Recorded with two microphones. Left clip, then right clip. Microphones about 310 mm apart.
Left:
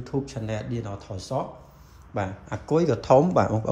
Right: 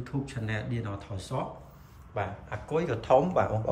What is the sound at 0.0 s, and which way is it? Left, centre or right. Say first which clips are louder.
Speech: left 6 dB; centre.